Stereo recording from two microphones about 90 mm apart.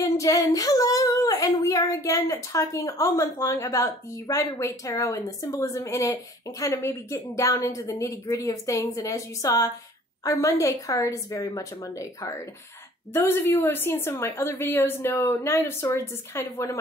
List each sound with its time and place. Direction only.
0.0 s female singing: 40° left (ahead or behind)
1.9 s a woman's voice: 35° left (ahead or behind)